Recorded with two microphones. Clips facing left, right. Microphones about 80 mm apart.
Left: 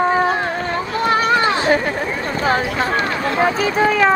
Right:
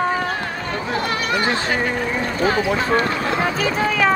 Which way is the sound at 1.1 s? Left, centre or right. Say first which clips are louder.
Left 8 dB; left.